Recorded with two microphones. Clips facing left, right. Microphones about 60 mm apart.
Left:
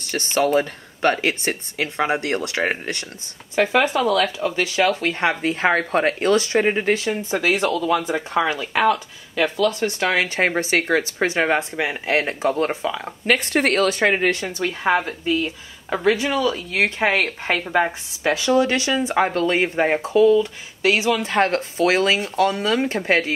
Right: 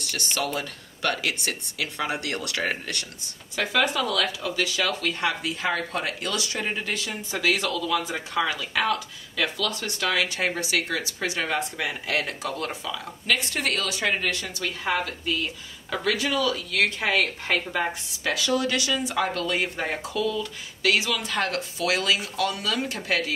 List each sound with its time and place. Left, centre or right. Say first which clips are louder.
0.0 s speech: left 8 dB; left